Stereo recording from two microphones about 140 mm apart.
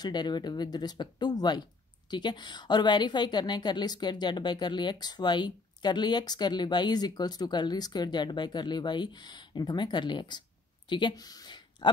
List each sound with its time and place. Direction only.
0.0 s a woman's voice: 30° left (ahead or behind)